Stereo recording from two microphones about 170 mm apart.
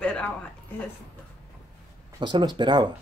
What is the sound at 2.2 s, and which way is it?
Speech, 25° right (ahead or behind).